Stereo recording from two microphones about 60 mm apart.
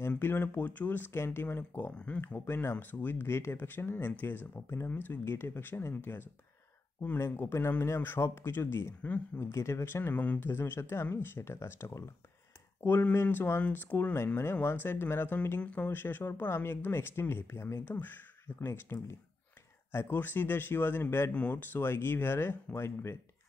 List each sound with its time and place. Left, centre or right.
0.2 s speech: left
2.0 s speech: left
2.2 s speech: left
9.4 s speech: left
10.1 s speech: left
10.5 s speech: left
14.1 s speech: left
15.6 s speech: left
15.9 s speech: left
17.8 s speech: left
21.3 s speech: left
21.5 s speech: left